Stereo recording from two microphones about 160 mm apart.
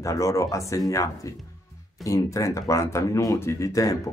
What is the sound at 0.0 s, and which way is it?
A man's voice, 20° left (ahead or behind).